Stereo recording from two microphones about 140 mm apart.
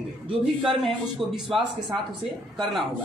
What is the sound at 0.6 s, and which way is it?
A man's voice, centre (ahead or behind).